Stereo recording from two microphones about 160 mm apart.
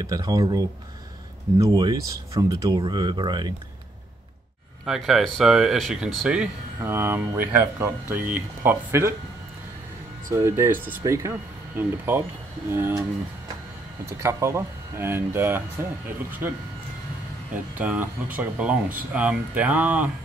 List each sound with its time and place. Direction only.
0.0 s speech: 25° right (ahead or behind)
4.8 s speech: centre (ahead or behind)
10.3 s speech: 15° right (ahead or behind)
14.2 s speech: 15° right (ahead or behind)
17.7 s speech: 10° right (ahead or behind)